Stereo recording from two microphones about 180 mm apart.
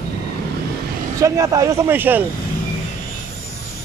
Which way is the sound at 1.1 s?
20° right (ahead or behind).